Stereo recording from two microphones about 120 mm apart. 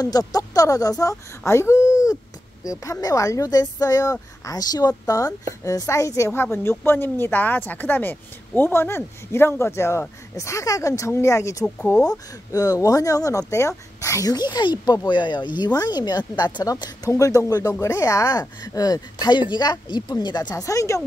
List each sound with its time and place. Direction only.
0.0 s speech: 30° left (ahead or behind)